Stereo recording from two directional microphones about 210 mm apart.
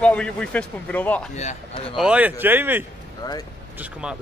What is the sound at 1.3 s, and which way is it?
Speech, 35° left (ahead or behind).